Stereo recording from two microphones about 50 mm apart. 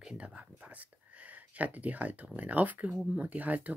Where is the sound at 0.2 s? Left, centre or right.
Right.